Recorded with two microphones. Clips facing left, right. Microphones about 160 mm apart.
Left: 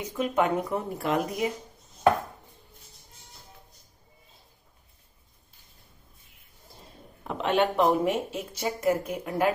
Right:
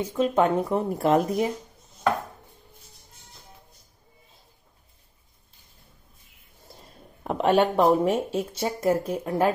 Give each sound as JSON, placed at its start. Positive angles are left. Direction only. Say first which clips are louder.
{"t": 0.0, "sound": "speech", "louder": "right 4 dB", "side_deg": -30}
{"t": 7.2, "sound": "speech", "louder": "right 4 dB", "side_deg": -40}